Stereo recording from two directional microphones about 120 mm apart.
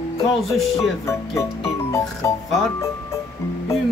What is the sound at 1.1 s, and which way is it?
Music, 25° left (ahead or behind).